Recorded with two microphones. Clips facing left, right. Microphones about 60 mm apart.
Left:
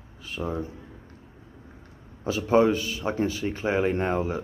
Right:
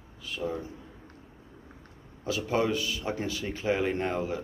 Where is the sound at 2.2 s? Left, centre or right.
Left.